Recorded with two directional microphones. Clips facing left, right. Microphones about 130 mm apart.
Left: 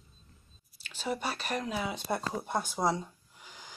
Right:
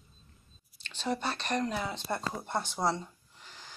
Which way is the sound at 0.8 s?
5° left (ahead or behind).